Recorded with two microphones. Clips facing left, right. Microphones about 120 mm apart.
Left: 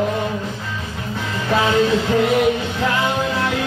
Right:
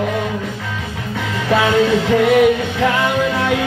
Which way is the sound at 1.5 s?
60° right (ahead or behind).